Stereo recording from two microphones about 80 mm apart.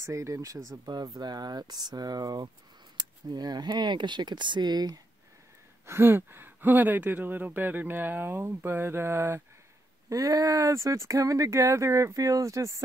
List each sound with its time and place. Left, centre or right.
0.0 s speech: right
5.9 s speech: right
10.0 s speech: right